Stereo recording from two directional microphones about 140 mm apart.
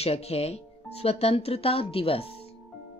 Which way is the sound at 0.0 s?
45° left (ahead or behind).